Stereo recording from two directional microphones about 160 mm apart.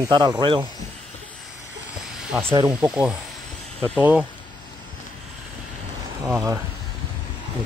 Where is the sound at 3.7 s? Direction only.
5° left (ahead or behind).